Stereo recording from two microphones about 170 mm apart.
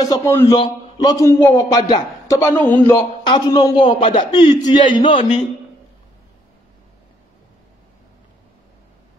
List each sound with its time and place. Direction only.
0.0 s a man's voice: 20° left (ahead or behind)
0.6 s a man's voice: 25° left (ahead or behind)
3.3 s a man's voice: 25° left (ahead or behind)